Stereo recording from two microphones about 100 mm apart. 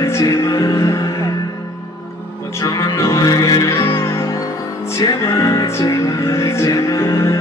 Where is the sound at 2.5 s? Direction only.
35° left (ahead or behind).